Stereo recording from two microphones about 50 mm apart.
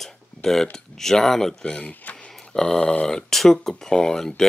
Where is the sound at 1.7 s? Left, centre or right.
Left.